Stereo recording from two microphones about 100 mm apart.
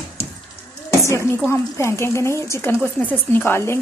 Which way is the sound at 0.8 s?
30° left (ahead or behind).